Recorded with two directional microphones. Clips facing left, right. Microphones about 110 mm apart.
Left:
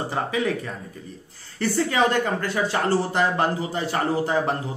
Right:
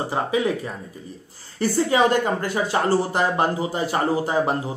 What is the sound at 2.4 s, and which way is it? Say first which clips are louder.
Speech: right 2 dB; 15° right (ahead or behind).